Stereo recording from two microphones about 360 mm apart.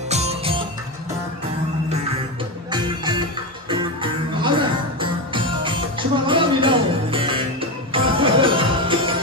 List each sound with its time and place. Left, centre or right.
0.1 s music: centre
2.7 s music: centre